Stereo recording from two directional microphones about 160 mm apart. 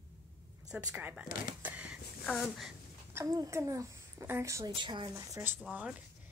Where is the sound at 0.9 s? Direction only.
10° right (ahead or behind).